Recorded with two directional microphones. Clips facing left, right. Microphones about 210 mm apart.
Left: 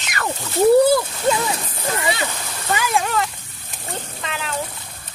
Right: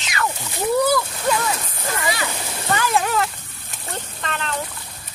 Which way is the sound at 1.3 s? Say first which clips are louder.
Left 2 dB; 25° left (ahead or behind).